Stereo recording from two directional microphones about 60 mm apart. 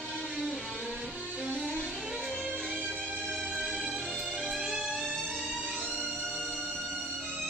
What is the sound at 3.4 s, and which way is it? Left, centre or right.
Music, centre.